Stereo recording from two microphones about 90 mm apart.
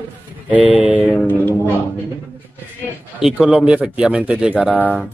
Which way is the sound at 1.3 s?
20° left (ahead or behind).